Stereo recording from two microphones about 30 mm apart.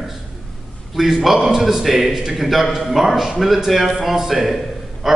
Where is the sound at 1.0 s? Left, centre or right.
Centre.